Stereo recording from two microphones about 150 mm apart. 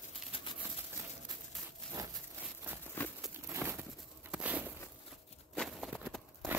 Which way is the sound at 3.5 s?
15° right (ahead or behind).